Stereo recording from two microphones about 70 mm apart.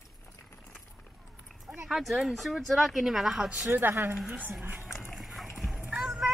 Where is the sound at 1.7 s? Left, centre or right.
Centre.